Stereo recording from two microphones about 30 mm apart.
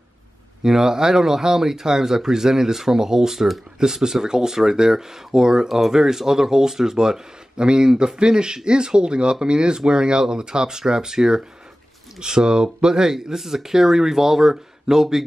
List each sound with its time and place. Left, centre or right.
0.7 s speech: centre
3.8 s speech: centre
7.5 s speech: right